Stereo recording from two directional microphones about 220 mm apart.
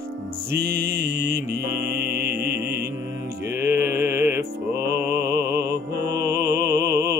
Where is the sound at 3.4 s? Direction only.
10° right (ahead or behind).